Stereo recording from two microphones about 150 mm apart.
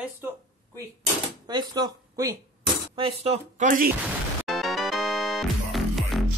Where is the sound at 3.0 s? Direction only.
40° right (ahead or behind).